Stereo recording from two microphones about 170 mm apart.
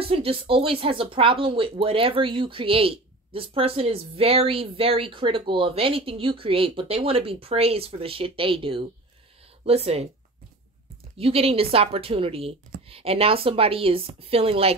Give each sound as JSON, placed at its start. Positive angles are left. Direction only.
{"t": 0.0, "sound": "speech", "side_deg": -35}
{"t": 11.1, "sound": "speech", "side_deg": -35}